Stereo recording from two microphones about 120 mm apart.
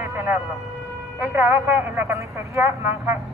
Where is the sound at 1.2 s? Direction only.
20° right (ahead or behind).